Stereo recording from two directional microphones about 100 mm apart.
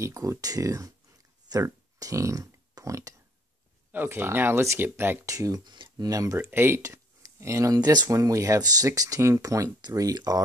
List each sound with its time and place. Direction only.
0.0 s speech: 30° right (ahead or behind)
3.9 s speech: 20° right (ahead or behind)
5.3 s speech: 35° right (ahead or behind)
6.3 s speech: 25° right (ahead or behind); by 10.4 s 40° right (ahead or behind)